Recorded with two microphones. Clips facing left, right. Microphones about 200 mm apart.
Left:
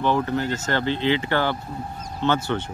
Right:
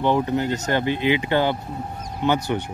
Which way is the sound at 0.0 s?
20° right (ahead or behind).